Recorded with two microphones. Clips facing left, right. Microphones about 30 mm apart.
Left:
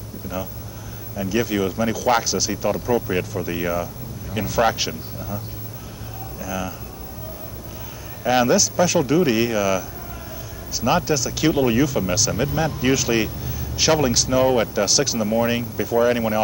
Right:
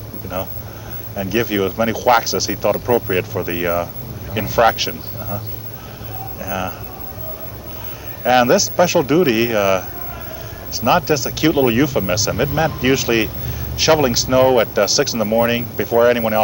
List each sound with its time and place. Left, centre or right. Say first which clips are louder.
1.1 s speech: right 3 dB; centre
6.4 s speech: right 4 dB; centre
8.2 s speech: right 4 dB; centre